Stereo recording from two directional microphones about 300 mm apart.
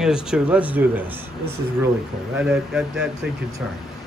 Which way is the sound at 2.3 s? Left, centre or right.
Centre.